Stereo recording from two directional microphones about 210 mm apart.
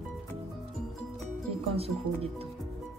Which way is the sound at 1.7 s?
30° right (ahead or behind).